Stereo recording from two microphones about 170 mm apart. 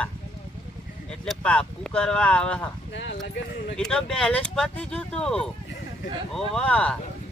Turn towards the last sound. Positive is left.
turn(degrees=5)  # may be behind; listen again after turning